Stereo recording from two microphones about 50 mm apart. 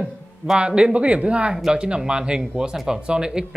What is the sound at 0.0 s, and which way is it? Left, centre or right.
Speech, centre.